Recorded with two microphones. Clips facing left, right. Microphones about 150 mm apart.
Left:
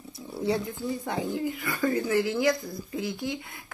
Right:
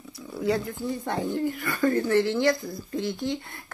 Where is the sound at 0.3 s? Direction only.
25° left (ahead or behind).